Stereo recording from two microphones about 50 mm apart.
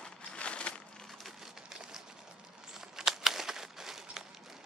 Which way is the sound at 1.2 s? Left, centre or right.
Centre.